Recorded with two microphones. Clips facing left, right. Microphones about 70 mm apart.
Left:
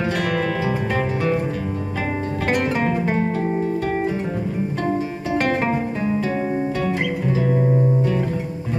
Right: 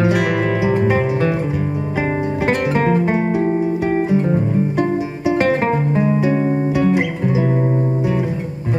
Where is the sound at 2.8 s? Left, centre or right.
Centre.